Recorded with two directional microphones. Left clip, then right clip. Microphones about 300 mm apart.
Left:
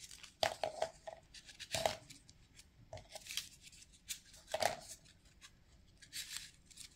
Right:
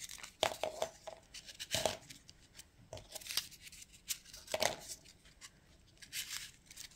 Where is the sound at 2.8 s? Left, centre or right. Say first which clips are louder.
Right 3 dB; centre.